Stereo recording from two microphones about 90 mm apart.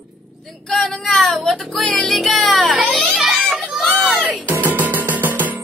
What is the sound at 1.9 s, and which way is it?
Music, 5° left (ahead or behind).